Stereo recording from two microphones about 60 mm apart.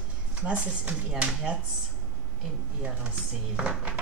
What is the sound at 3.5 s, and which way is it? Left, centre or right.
Speech, right.